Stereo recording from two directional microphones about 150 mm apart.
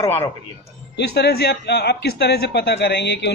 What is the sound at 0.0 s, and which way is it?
Speech, 15° left (ahead or behind).